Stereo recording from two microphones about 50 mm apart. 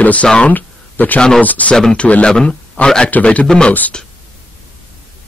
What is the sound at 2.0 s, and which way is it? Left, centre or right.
A man's voice, left.